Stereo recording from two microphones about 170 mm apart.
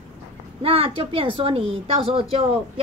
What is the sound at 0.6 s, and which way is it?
A woman's voice, 35° right (ahead or behind).